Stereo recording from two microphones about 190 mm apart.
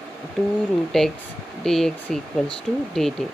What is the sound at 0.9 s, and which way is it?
Speech, 5° left (ahead or behind).